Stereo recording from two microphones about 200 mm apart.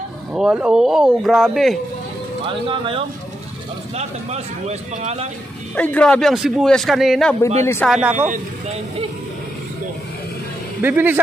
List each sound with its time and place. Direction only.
0.3 s a man's voice: 5° right (ahead or behind)
2.4 s speech: 25° right (ahead or behind)
5.8 s a man's voice: 5° left (ahead or behind)
7.6 s speech: 10° left (ahead or behind)
7.9 s speech: 5° right (ahead or behind)
10.8 s speech: 10° right (ahead or behind)